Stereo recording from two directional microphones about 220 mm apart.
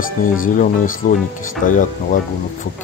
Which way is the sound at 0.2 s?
40° left (ahead or behind).